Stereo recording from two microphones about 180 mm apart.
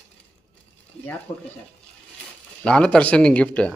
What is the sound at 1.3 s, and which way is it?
Speech, 25° left (ahead or behind).